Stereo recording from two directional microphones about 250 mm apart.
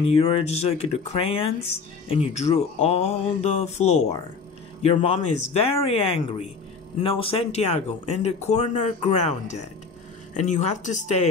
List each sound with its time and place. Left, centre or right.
0.0 s speech: left